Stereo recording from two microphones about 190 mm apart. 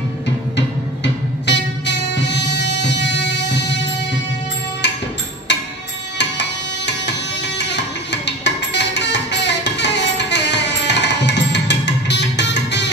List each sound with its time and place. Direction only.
0.6 s music: 65° left (ahead or behind)
4.8 s music: 65° left (ahead or behind)
6.9 s music: 70° left (ahead or behind)